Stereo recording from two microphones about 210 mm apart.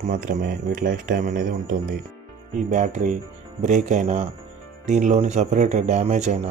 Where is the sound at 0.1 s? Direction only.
40° right (ahead or behind).